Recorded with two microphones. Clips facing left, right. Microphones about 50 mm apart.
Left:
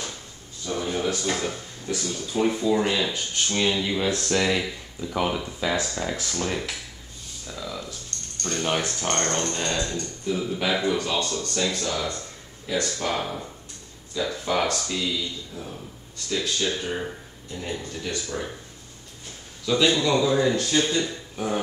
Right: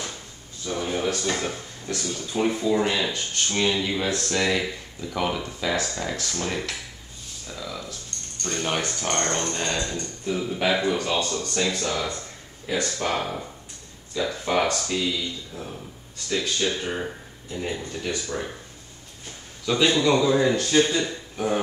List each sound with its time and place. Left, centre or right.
0.7 s a sound: centre
1.1 s speech: centre
11.3 s a man's voice: centre
11.8 s a sound: centre
13.0 s a man's voice: centre
19.6 s a man's voice: centre